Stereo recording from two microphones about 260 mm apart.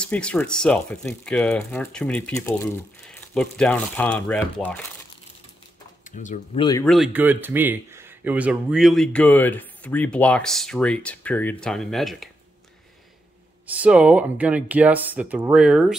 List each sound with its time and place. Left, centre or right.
0.0 s speech: centre
6.0 s speech: left
6.8 s speech: centre
13.7 s speech: centre